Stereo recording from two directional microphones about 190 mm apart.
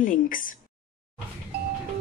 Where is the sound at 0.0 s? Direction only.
45° left (ahead or behind).